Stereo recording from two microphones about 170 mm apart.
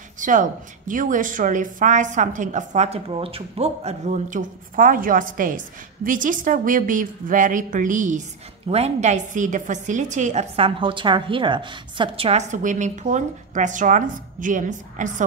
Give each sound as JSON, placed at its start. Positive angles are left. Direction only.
{"t": 0.2, "sound": "a woman's voice", "side_deg": -50}